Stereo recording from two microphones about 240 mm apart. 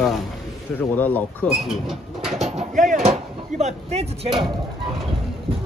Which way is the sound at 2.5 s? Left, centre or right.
Right.